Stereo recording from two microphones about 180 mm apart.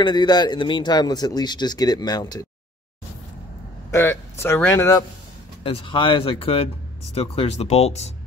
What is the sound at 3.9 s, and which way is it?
Speech, 15° left (ahead or behind).